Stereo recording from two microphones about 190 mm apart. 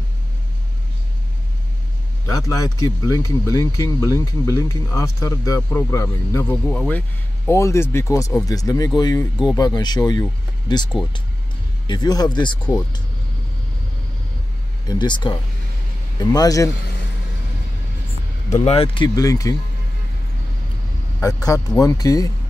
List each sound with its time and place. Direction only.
2.2 s speech: 20° left (ahead or behind)
14.9 s speech: 25° left (ahead or behind)
18.6 s speech: 30° left (ahead or behind)
21.2 s speech: 20° left (ahead or behind)